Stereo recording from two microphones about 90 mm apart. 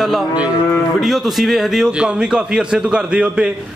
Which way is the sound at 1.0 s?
Centre (ahead or behind).